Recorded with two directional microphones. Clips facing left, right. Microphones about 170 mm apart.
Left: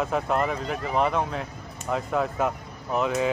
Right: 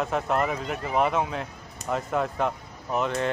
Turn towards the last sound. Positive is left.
turn(degrees=0)  # may be behind; listen again after turning